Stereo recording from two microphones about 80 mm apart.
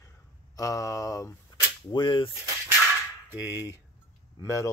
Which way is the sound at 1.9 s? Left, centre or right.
Left.